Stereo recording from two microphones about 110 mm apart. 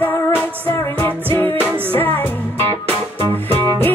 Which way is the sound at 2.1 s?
20° left (ahead or behind).